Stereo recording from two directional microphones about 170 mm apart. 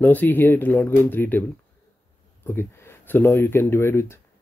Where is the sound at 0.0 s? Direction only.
10° left (ahead or behind).